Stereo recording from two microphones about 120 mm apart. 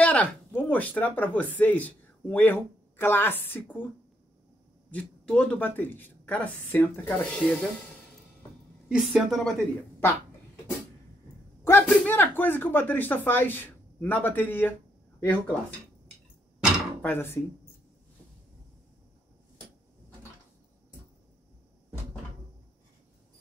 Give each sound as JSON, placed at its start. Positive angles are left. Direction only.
{"t": 0.0, "sound": "speech", "side_deg": 10}
{"t": 4.9, "sound": "speech", "side_deg": 10}
{"t": 8.8, "sound": "a woman's voice", "side_deg": -10}
{"t": 9.9, "sound": "a sound", "side_deg": 20}
{"t": 11.8, "sound": "speech", "side_deg": 15}
{"t": 17.0, "sound": "speech", "side_deg": 15}